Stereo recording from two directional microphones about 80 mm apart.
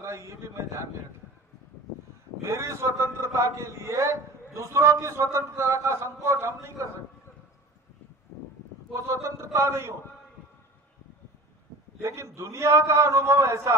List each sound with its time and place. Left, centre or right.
0.0 s a sound: right
2.4 s a man's voice: right
8.9 s a man's voice: right
12.0 s a man's voice: right